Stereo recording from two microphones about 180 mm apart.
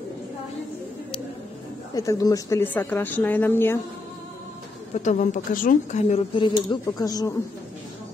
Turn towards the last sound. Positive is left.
turn(degrees=20)  # may be behind; listen again after turning